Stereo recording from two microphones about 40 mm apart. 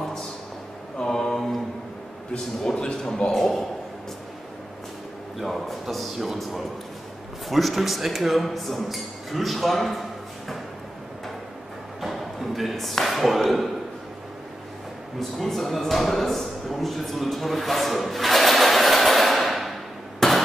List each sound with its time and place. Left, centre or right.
1.0 s mantra: centre
2.3 s a man's voice: left
5.4 s speech: centre
7.4 s speech: centre
12.0 s speech: centre
15.1 s speech: centre
20.2 s a sound: centre